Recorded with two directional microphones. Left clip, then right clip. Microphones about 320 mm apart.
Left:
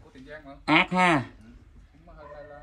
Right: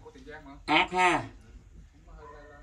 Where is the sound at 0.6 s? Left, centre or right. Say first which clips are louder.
Left 3 dB; centre.